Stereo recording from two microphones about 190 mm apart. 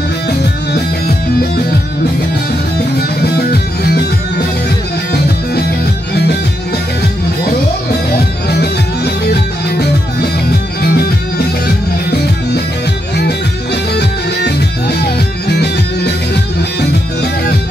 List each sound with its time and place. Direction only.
3.0 s music: 55° left (ahead or behind)
8.5 s music: 60° left (ahead or behind)
13.9 s music: 60° left (ahead or behind)